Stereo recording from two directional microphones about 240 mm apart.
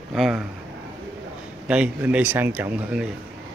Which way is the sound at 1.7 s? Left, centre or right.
Centre.